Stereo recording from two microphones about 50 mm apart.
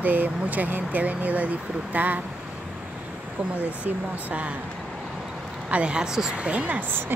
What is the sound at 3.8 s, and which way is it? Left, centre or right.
Speech, right.